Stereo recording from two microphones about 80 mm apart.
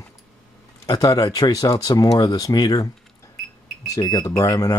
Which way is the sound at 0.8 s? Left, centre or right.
Left.